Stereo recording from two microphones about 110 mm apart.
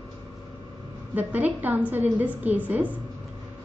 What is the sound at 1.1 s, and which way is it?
A woman's voice, 15° right (ahead or behind).